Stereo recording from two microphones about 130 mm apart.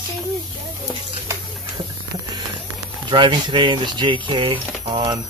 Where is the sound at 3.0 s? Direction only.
35° right (ahead or behind).